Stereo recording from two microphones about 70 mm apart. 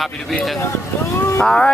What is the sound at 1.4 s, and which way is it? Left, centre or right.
Speech, centre.